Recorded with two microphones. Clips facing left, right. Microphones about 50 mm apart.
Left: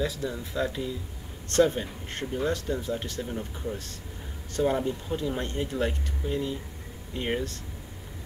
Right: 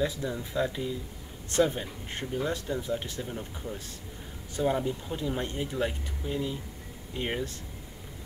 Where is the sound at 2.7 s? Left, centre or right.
Centre.